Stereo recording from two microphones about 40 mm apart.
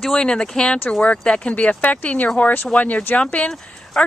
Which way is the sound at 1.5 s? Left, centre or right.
Left.